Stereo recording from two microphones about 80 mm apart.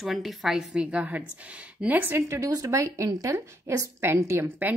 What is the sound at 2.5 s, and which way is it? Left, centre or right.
A woman's voice, right.